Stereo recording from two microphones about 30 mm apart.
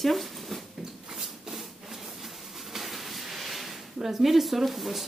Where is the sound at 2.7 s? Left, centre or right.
Centre.